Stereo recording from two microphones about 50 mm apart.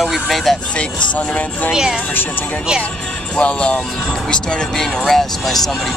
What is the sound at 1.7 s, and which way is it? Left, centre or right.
Speech, centre.